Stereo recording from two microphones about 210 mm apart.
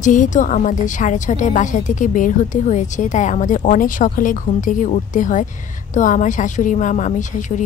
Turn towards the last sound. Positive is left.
turn(degrees=35)  # may be behind; listen again after turning